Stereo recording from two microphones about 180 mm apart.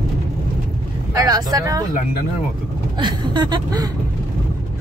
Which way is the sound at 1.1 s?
20° right (ahead or behind).